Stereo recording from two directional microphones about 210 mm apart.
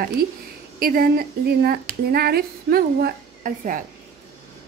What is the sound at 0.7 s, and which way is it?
A woman's voice, 45° right (ahead or behind).